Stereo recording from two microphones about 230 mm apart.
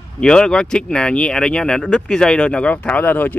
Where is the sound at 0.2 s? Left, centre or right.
Centre.